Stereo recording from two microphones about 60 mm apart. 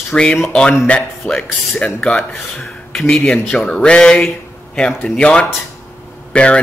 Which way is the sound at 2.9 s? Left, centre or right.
Centre.